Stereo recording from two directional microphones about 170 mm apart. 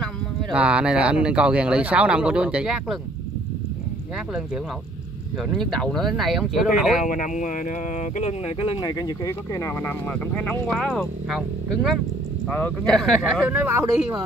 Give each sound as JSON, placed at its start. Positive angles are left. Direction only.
{"t": 0.0, "sound": "speech", "side_deg": -5}
{"t": 5.4, "sound": "speech", "side_deg": 0}
{"t": 7.1, "sound": "speech", "side_deg": 50}
{"t": 8.7, "sound": "speech", "side_deg": 25}
{"t": 13.5, "sound": "speech", "side_deg": -15}